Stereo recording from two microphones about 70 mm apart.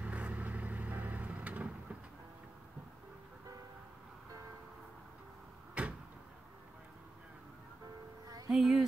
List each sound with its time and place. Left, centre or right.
0.0 s vehicle: centre
5.8 s cupboard open or close: centre
8.5 s speech: centre